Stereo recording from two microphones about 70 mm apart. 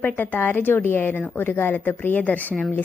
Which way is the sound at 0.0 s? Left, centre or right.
Left.